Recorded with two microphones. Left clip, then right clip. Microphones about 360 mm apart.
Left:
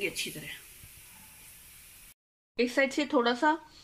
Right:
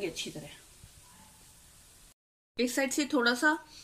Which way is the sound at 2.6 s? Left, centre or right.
Centre.